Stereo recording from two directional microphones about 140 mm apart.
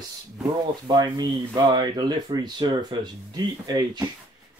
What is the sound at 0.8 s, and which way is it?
Speech, 30° right (ahead or behind).